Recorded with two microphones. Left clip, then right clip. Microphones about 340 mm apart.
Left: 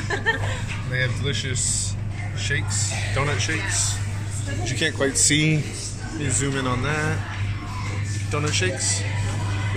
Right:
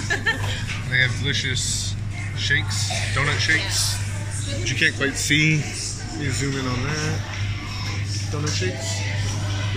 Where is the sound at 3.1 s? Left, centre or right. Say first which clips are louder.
Right 5 dB; centre.